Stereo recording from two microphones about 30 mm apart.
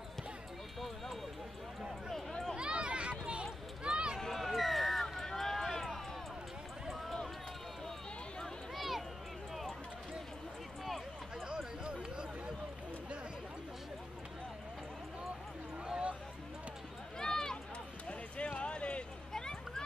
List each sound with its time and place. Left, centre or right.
0.7 s a sound: centre
2.5 s run: right
4.4 s run: centre
8.7 s run: centre
11.4 s chatter: right
17.2 s run: centre
18.0 s run: left
19.3 s a sound: left